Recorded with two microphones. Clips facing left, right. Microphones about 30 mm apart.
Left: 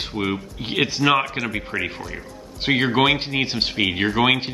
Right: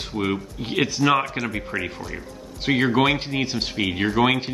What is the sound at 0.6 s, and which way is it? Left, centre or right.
Speech, left.